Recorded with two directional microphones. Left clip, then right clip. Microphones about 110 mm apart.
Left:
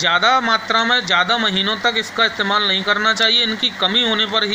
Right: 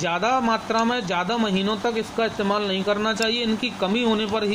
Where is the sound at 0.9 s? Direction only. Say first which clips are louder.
Left 8 dB; 5° left (ahead or behind).